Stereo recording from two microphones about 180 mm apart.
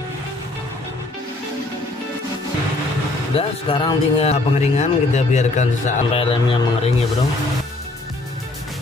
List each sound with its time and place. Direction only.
3.3 s speech: 30° left (ahead or behind)